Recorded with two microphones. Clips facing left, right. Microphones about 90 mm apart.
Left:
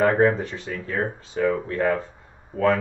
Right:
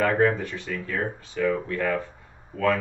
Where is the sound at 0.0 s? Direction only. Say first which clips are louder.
Left 3 dB; 25° left (ahead or behind).